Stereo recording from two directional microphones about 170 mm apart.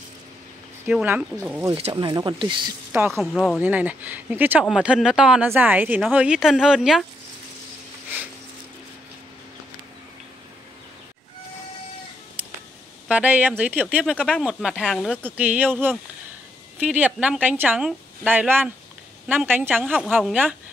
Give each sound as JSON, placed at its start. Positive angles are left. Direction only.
{"t": 0.8, "sound": "a woman's voice", "side_deg": -10}
{"t": 1.8, "sound": "speech", "side_deg": -35}
{"t": 3.1, "sound": "speech", "side_deg": 0}
{"t": 3.6, "sound": "a woman's voice", "side_deg": -10}
{"t": 13.1, "sound": "a woman's voice", "side_deg": -10}
{"t": 15.2, "sound": "a woman's voice", "side_deg": -10}
{"t": 19.8, "sound": "speech", "side_deg": 0}